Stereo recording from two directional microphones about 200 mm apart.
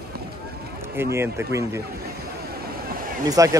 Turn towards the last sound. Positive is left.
turn(degrees=-15)  # may be behind; listen again after turning